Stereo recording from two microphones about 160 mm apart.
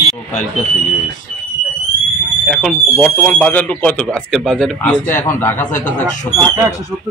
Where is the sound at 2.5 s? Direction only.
Centre (ahead or behind).